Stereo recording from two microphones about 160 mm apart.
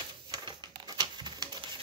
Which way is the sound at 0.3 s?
25° right (ahead or behind).